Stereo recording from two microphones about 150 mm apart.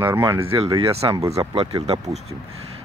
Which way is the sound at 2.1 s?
45° right (ahead or behind).